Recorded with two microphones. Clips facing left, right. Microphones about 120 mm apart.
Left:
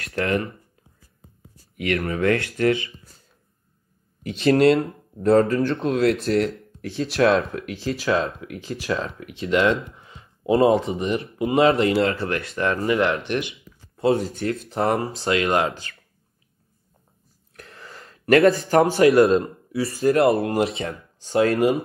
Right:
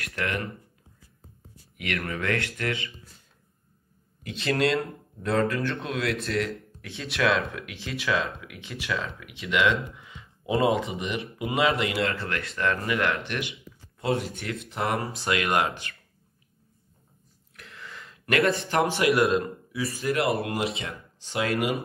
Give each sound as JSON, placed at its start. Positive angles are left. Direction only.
{"t": 0.0, "sound": "speech", "side_deg": 30}
{"t": 1.8, "sound": "speech", "side_deg": 30}
{"t": 4.3, "sound": "speech", "side_deg": 55}
{"t": 5.4, "sound": "speech", "side_deg": 30}
{"t": 5.9, "sound": "speech", "side_deg": 55}
{"t": 7.0, "sound": "speech", "side_deg": 35}
{"t": 17.6, "sound": "gasp", "side_deg": 40}
{"t": 18.7, "sound": "speech", "side_deg": 40}